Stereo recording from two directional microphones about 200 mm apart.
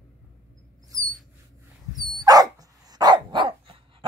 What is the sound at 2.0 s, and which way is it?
Dog, 20° right (ahead or behind).